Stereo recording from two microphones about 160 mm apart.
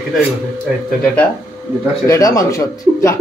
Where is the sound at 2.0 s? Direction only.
20° left (ahead or behind).